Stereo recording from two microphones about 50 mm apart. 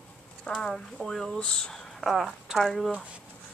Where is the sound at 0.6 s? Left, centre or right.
Centre.